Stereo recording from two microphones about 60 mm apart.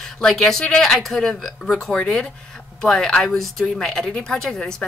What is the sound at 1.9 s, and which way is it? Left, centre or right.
Speech, centre.